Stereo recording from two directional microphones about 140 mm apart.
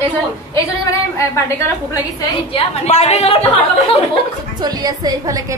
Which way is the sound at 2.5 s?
50° left (ahead or behind).